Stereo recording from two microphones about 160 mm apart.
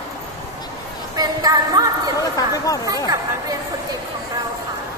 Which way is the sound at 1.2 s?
25° right (ahead or behind).